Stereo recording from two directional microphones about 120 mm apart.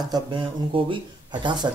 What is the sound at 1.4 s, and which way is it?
Speech, 40° right (ahead or behind).